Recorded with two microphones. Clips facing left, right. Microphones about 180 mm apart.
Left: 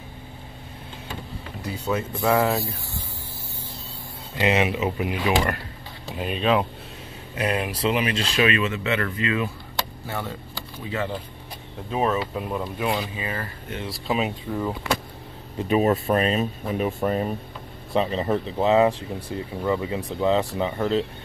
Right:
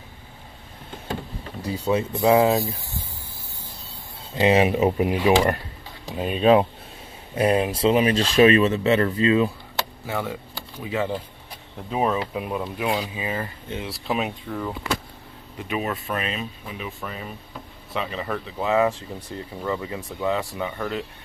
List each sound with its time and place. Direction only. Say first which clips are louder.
1.6 s speech: right 4 dB; 30° right (ahead or behind)
4.4 s speech: right 4 dB; 35° right (ahead or behind)
10.0 s speech: right 3 dB; 15° right (ahead or behind)
14.0 s speech: left 1 dB; centre (ahead or behind)
15.7 s speech: left 7 dB; 40° left (ahead or behind)
17.9 s speech: left 6 dB; 30° left (ahead or behind)